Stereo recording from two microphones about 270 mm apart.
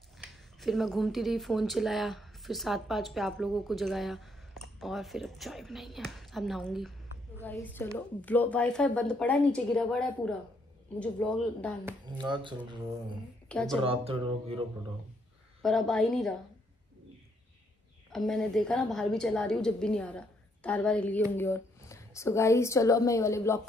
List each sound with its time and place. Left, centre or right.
0.2 s a woman's voice: centre
11.8 s speech: centre
13.5 s speech: centre
13.8 s speech: right
15.6 s a woman's voice: centre
18.1 s a woman's voice: centre